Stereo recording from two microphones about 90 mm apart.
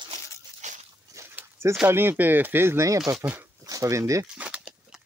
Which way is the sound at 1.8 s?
25° right (ahead or behind).